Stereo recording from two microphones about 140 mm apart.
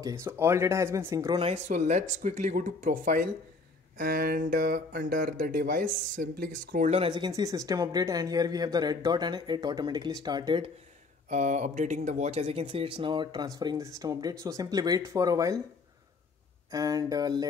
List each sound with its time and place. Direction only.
0.0 s speech: 20° right (ahead or behind)
1.7 s speech: 55° right (ahead or behind); by 3.3 s 70° right (ahead or behind)
4.0 s speech: 90° right
7.1 s speech: 30° right (ahead or behind)
11.2 s speech: 60° right (ahead or behind); by 15.5 s 25° right (ahead or behind)
16.7 s speech: 25° right (ahead or behind)